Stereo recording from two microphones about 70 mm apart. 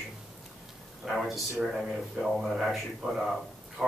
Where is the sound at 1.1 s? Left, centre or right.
Centre.